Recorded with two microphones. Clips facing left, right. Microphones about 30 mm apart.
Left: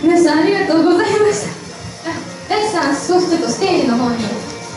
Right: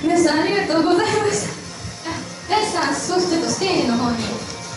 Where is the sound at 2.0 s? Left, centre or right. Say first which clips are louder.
Left 4 dB; centre.